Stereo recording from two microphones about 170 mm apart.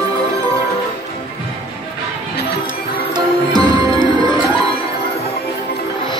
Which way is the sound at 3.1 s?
25° right (ahead or behind).